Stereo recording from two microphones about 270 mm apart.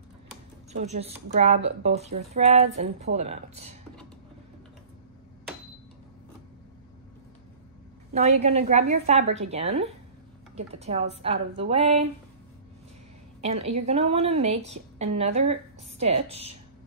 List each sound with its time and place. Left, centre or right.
0.7 s speech: right
8.1 s speech: right
13.4 s a woman's voice: right